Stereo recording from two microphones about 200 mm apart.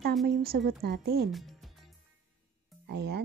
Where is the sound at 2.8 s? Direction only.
55° right (ahead or behind).